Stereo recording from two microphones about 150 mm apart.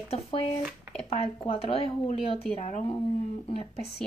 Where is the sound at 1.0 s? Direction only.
40° left (ahead or behind).